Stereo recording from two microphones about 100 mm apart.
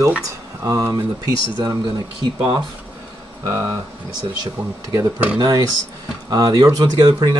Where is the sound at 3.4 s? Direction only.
35° right (ahead or behind).